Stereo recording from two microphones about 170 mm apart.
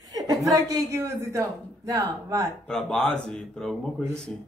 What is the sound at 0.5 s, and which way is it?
A woman's voice, 20° right (ahead or behind).